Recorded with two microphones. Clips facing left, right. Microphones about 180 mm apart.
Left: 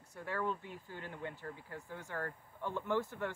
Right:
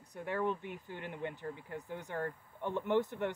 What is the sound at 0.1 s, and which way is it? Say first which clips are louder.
Speech: right 3 dB; 20° right (ahead or behind).